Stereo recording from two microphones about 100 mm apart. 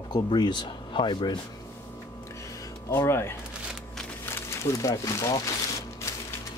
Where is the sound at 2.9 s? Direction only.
25° left (ahead or behind).